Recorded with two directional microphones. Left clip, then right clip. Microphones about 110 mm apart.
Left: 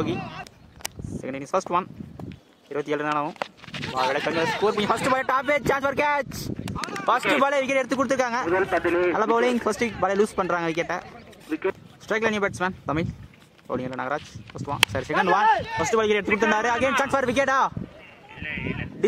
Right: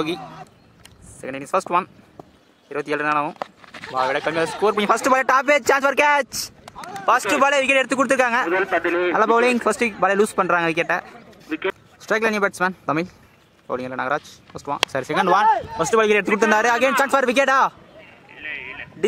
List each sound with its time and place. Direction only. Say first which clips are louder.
1.2 s a man's voice: right 4 dB; 15° right (ahead or behind)
3.2 s speech: right 4 dB; 5° right (ahead or behind)
4.1 s a man's voice: right 3 dB; 15° right (ahead or behind)
4.6 s a man's voice: right 7 dB; 30° right (ahead or behind)
6.7 s a sound: left 4 dB; 10° left (ahead or behind)
7.1 s a man's voice: right 4 dB; 30° right (ahead or behind)
8.5 s speech: right 2 dB; 55° right (ahead or behind)
9.1 s a man's voice: right 5 dB; 20° right (ahead or behind)
11.4 s speech: right 2 dB; 50° right (ahead or behind)
12.1 s a man's voice: right 4 dB; 15° right (ahead or behind)
18.4 s a sound: right 1 dB; 35° right (ahead or behind)